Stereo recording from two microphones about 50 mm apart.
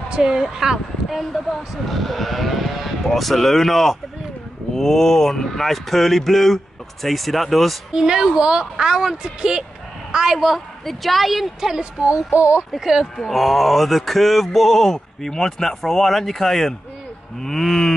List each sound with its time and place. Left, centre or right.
0.1 s a woman's voice: centre
1.2 s speech: centre
7.9 s a woman's voice: centre
11.6 s a woman's voice: centre
12.4 s speech: right
12.7 s a woman's voice: centre
17.4 s cattle: centre